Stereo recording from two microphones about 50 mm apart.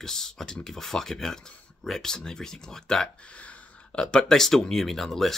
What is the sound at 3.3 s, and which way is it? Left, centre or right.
Speech, left.